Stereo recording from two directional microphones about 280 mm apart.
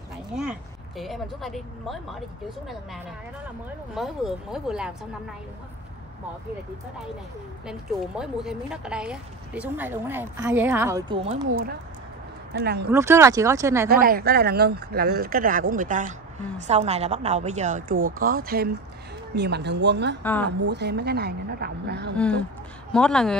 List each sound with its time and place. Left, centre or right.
0.4 s speech: centre
3.9 s speech: centre
8.2 s a woman's voice: centre
12.5 s speech: right
12.9 s a woman's voice: centre
13.8 s a woman's voice: right
22.1 s speech: centre